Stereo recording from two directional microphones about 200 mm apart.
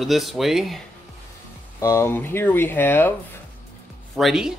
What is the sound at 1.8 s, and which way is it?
Speech, 15° left (ahead or behind).